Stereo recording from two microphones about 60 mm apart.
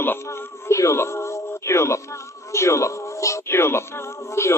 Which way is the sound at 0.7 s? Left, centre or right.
Left.